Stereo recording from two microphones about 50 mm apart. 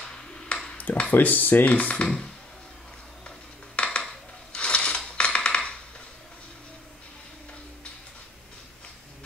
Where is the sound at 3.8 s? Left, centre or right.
Left.